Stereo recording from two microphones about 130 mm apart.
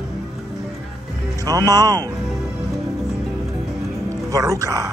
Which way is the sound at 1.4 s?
30° right (ahead or behind).